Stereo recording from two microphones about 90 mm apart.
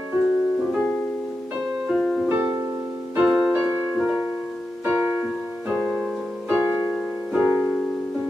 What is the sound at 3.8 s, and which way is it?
Music, 15° right (ahead or behind).